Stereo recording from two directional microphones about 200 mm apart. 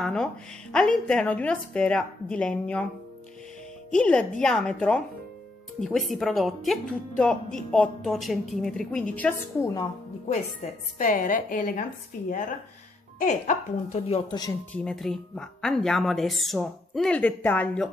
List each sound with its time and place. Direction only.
0.0 s speech: 5° left (ahead or behind)
3.9 s speech: 5° left (ahead or behind)
11.0 s a woman's voice: 40° left (ahead or behind); by 14.5 s 25° left (ahead or behind)
14.7 s speech: 5° left (ahead or behind)